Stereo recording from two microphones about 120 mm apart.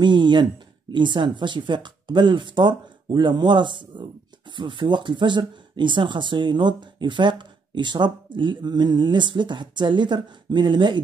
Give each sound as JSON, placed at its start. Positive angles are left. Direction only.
{"t": 0.0, "sound": "speech", "side_deg": -40}